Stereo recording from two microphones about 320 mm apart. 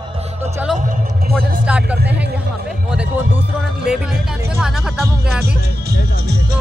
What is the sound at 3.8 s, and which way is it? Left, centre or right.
Speech, centre.